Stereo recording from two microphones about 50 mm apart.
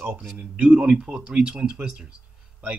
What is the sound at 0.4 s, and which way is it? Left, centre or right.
Speech, right.